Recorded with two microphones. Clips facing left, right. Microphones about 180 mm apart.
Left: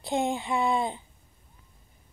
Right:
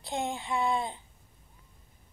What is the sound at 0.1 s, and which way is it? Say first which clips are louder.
Speech: left 5 dB; 15° left (ahead or behind).